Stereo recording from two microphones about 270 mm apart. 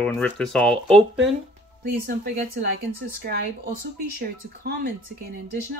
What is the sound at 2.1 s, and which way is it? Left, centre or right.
Speech, right.